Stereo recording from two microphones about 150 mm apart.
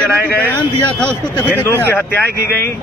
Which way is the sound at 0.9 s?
10° left (ahead or behind).